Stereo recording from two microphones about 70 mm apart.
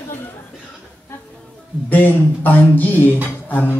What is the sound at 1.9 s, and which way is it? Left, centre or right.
Speech, left.